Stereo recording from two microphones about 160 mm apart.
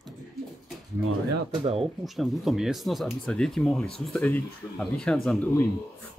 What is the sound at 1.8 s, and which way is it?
Speech, centre (ahead or behind).